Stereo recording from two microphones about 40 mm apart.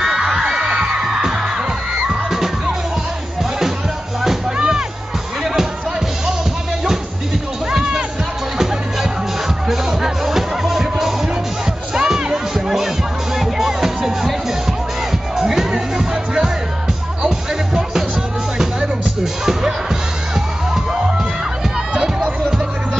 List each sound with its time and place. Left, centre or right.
0.0 s music: centre
4.6 s music: centre
9.7 s music: centre
15.3 s music: centre